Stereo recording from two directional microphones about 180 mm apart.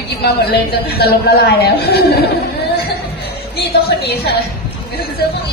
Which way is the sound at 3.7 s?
60° left (ahead or behind).